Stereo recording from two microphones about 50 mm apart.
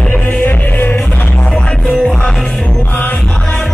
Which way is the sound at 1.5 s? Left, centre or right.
Centre.